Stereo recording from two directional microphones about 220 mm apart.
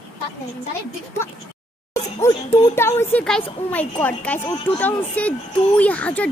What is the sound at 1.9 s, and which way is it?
Music, 15° left (ahead or behind).